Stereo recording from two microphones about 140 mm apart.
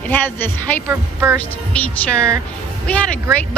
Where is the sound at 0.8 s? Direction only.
15° right (ahead or behind).